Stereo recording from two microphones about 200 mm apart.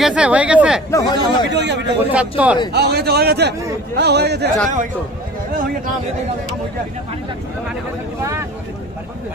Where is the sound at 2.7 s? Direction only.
55° right (ahead or behind).